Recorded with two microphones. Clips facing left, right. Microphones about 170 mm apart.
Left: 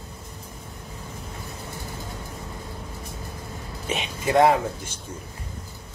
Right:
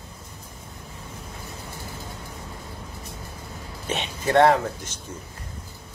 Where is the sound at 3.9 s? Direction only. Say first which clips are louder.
Right 1 dB; 5° left (ahead or behind).